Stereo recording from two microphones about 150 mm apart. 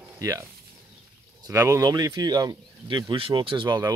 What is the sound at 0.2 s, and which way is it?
Speech, 20° right (ahead or behind).